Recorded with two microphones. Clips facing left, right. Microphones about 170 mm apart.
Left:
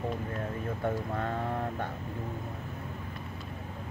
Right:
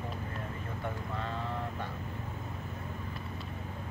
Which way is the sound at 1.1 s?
50° left (ahead or behind).